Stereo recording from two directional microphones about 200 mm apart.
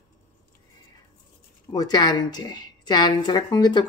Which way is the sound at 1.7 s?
20° left (ahead or behind).